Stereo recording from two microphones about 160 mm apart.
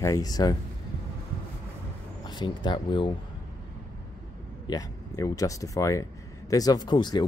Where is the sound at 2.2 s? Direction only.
25° left (ahead or behind).